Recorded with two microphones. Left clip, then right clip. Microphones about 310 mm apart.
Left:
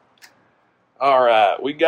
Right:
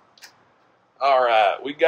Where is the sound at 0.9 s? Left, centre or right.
Left.